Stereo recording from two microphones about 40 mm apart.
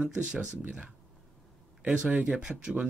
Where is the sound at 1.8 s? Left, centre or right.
Right.